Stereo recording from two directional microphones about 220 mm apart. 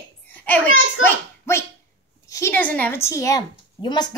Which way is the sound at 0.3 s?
10° left (ahead or behind).